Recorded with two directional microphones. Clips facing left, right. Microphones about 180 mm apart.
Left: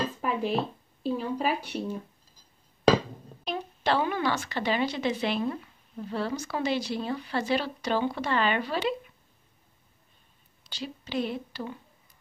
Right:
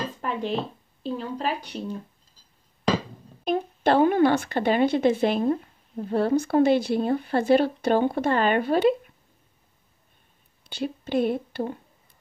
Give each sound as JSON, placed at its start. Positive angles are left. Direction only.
{"t": 0.2, "sound": "a sound", "side_deg": 5}
{"t": 1.0, "sound": "speech", "side_deg": 5}
{"t": 3.4, "sound": "speech", "side_deg": -50}
{"t": 10.6, "sound": "a woman's voice", "side_deg": -55}